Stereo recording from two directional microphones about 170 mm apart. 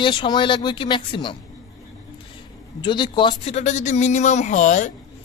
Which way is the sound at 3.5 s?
45° left (ahead or behind).